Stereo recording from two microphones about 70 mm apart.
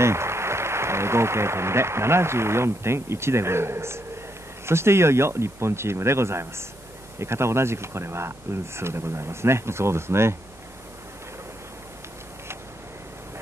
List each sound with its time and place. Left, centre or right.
0.0 s a man's voice: right